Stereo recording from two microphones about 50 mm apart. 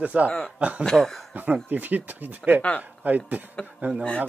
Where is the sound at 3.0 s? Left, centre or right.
Right.